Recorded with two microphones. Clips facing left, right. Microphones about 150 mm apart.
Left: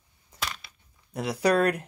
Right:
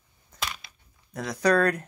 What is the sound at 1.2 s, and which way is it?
Speech, 10° left (ahead or behind).